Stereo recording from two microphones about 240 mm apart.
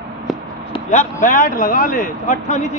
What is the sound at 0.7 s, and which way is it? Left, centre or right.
Speech, left.